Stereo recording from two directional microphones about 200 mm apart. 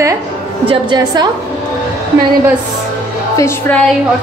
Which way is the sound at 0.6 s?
20° right (ahead or behind).